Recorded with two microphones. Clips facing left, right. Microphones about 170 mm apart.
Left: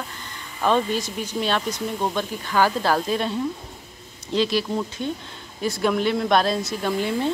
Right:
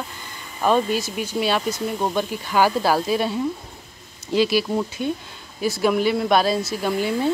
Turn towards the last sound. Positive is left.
turn(degrees=-5)  # may be behind; listen again after turning